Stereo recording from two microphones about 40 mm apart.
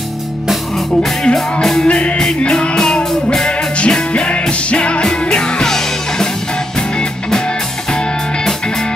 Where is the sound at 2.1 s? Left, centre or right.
Centre.